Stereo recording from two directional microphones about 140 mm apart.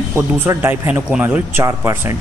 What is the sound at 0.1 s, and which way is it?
Speech, 15° right (ahead or behind).